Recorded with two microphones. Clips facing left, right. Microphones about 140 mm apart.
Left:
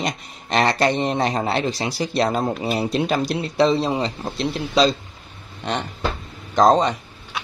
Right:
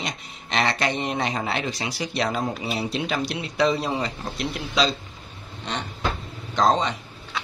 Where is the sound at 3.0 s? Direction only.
40° left (ahead or behind).